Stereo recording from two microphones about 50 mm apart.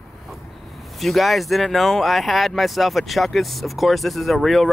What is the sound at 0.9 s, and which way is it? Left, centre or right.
Speech, centre.